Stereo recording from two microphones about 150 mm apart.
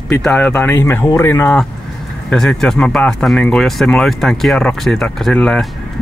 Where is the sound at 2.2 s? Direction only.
5° left (ahead or behind).